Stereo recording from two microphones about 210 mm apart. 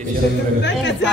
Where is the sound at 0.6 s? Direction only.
55° left (ahead or behind).